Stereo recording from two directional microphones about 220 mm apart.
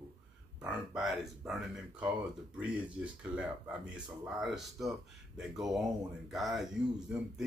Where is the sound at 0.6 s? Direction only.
Centre (ahead or behind).